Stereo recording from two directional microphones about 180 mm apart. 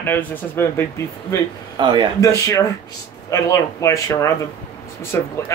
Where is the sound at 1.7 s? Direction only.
25° right (ahead or behind).